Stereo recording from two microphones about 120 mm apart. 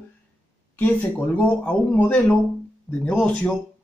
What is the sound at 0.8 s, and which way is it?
Speech, 15° left (ahead or behind).